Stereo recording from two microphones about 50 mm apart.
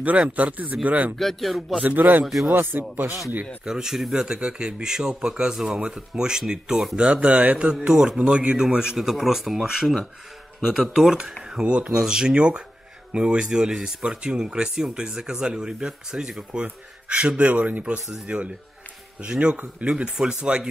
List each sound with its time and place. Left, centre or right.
0.0 s speech: right
1.1 s speech: centre
1.8 s a man's voice: right
3.6 s speech: centre; by 7.5 s right
7.8 s speech: centre
11.6 s speech: right
16.6 s speech: right